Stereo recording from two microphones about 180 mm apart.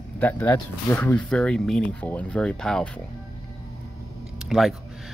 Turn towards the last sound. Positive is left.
turn(degrees=0)  # may be behind; listen again after turning